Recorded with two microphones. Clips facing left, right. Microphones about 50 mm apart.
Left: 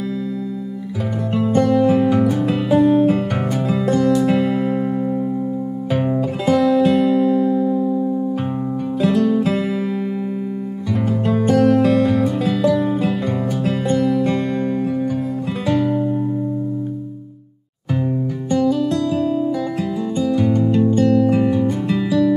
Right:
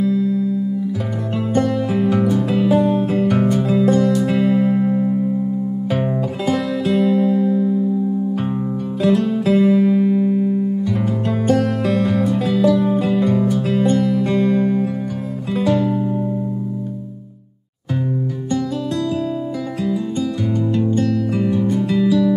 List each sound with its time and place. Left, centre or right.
1.3 s music: centre
3.3 s music: centre
3.6 s music: centre
9.0 s music: centre
20.2 s music: centre